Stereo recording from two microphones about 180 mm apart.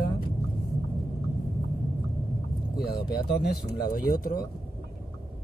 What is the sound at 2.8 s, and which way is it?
Speech, 60° left (ahead or behind).